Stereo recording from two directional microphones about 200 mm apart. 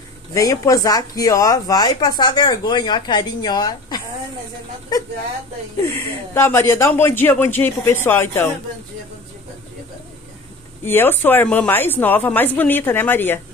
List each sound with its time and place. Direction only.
0.3 s speech: 15° left (ahead or behind)
5.8 s speech: 10° left (ahead or behind)
10.8 s speech: 10° left (ahead or behind)